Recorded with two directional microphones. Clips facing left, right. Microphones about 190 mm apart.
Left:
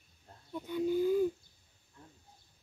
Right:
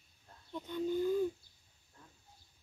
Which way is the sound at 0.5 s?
10° left (ahead or behind).